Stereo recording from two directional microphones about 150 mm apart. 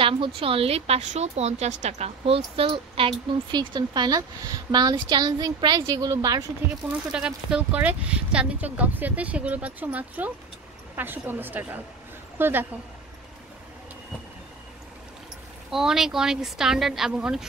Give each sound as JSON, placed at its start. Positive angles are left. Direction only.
{"t": 0.4, "sound": "a woman's voice", "side_deg": -40}
{"t": 6.9, "sound": "speech", "side_deg": -5}
{"t": 15.7, "sound": "speech", "side_deg": -5}